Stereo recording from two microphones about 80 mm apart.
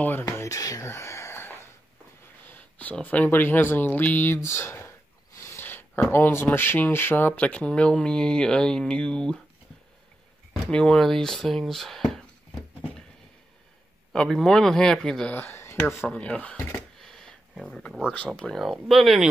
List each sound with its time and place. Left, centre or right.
0.4 s a sound: left
0.8 s a sound: left
2.4 s speech: left
4.4 s a sound: left
6.1 s speech: left; by 9.4 s centre
10.7 s speech: centre
14.1 s speech: centre
15.3 s speech: left
16.1 s speech: centre
17.0 s a sound: centre
18.1 s speech: centre
18.6 s speech: centre